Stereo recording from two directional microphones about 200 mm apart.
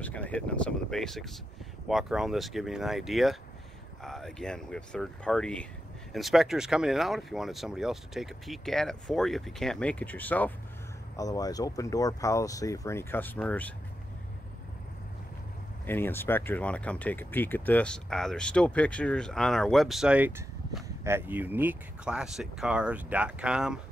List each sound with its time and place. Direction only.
0.0 s speech: 5° left (ahead or behind)
15.9 s speech: 10° left (ahead or behind)